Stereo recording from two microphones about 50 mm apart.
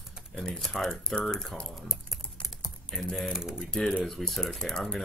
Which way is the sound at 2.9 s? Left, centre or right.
Centre.